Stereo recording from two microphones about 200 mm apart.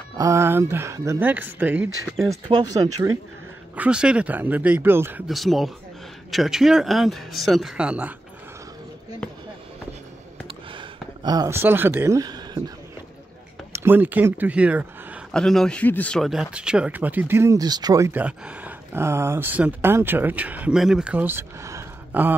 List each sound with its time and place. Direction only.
0.2 s speech: 15° right (ahead or behind)
2.4 s speech: 20° right (ahead or behind)
3.7 s speech: 5° right (ahead or behind)
10.7 s speech: 20° right (ahead or behind)
13.7 s speech: 10° right (ahead or behind)